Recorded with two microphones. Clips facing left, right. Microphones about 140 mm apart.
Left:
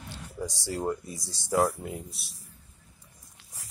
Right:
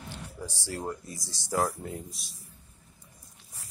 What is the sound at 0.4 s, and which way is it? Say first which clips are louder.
Speech: left 5 dB; 25° left (ahead or behind).